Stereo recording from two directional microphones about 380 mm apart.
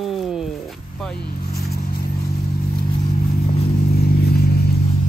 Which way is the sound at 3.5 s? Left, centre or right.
Left.